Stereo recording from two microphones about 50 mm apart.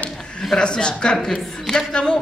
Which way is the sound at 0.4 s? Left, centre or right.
Centre.